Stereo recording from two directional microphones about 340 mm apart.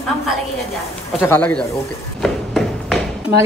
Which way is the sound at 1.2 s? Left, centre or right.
Centre.